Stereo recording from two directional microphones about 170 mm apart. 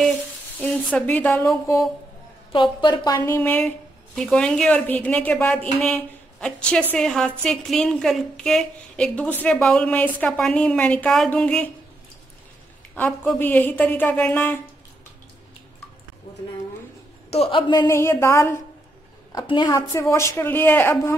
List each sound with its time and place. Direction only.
0.9 s speech: 10° left (ahead or behind)
2.5 s a woman's voice: 30° left (ahead or behind); by 11.6 s 5° left (ahead or behind)
12.9 s speech: 10° left (ahead or behind)
17.3 s speech: 35° left (ahead or behind); by 18.6 s 15° left (ahead or behind)
19.3 s speech: 25° left (ahead or behind)